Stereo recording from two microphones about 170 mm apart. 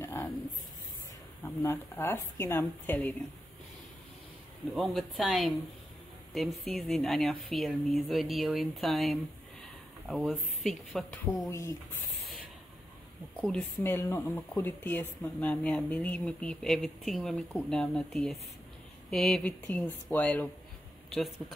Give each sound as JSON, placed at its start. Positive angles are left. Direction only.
{"t": 0.0, "sound": "a sound", "side_deg": 15}
{"t": 1.4, "sound": "a woman's voice", "side_deg": 15}
{"t": 4.7, "sound": "speech", "side_deg": 0}
{"t": 6.7, "sound": "speech", "side_deg": 0}
{"t": 11.4, "sound": "speech", "side_deg": 20}
{"t": 13.4, "sound": "a woman's voice", "side_deg": 5}